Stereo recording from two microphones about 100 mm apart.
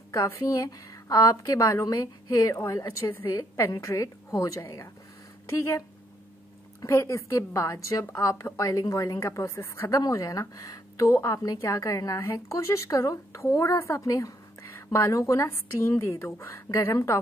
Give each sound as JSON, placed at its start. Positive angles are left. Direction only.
{"t": 0.1, "sound": "a woman's voice", "side_deg": 30}